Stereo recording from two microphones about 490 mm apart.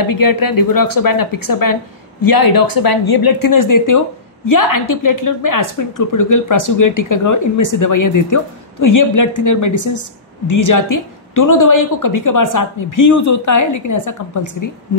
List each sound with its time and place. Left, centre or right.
0.0 s a woman's voice: left